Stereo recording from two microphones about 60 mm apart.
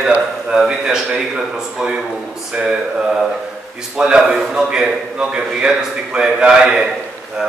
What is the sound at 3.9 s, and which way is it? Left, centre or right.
A man's voice, centre.